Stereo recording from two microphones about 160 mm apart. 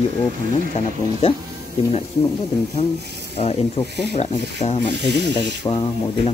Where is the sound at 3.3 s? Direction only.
40° left (ahead or behind).